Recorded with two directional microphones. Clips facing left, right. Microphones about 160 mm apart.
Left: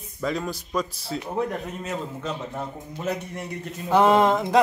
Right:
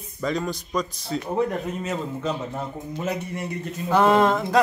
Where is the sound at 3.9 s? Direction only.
15° left (ahead or behind).